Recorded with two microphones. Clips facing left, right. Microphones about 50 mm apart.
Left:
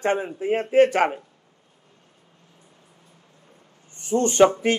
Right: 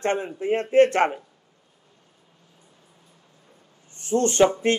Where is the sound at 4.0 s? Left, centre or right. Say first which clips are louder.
Left 2 dB; left.